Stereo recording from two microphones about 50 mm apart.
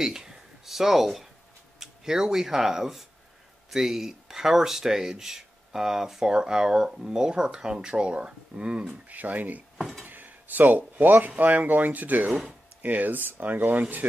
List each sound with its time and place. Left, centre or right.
0.0 s a sound: centre
1.8 s speech: centre
9.1 s speech: right
9.8 s speech: centre
10.0 s speech: right